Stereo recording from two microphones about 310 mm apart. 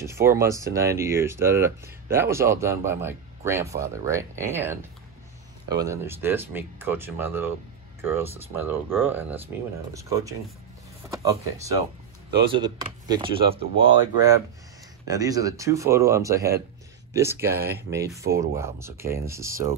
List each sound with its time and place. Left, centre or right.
0.0 s speech: centre